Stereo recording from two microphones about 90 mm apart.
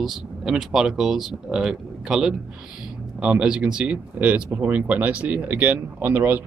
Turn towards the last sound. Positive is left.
turn(degrees=-20)  # may be behind; listen again after turning